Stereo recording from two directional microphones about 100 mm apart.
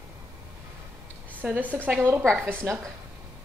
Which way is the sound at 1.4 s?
15° right (ahead or behind).